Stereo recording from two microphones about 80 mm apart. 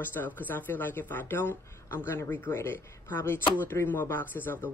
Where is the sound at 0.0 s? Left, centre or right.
Left.